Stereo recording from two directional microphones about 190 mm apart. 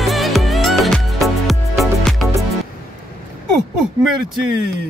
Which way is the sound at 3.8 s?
Centre (ahead or behind).